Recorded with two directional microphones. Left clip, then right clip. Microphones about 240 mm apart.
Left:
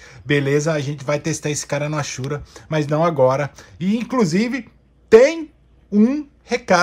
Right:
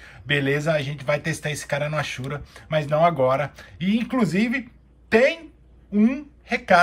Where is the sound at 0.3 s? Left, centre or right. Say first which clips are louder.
Left 3 dB; left.